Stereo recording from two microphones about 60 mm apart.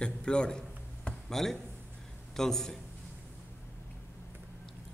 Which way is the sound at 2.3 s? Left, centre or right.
Centre.